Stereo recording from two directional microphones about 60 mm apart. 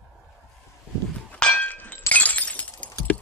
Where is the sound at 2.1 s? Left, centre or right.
Left.